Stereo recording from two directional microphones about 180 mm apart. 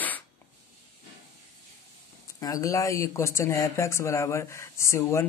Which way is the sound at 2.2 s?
20° left (ahead or behind).